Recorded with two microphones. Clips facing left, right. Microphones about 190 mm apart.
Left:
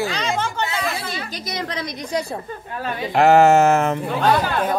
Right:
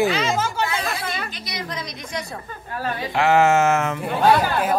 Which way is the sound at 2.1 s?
30° left (ahead or behind).